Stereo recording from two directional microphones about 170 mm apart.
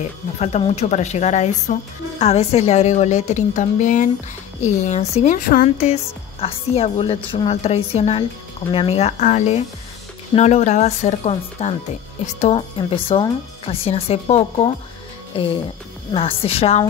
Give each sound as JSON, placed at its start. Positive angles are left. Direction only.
{"t": 0.4, "sound": "a woman's voice", "side_deg": 40}
{"t": 6.4, "sound": "speech", "side_deg": 35}